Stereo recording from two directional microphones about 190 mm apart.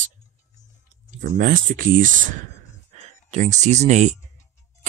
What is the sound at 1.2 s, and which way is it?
Speech, 45° right (ahead or behind).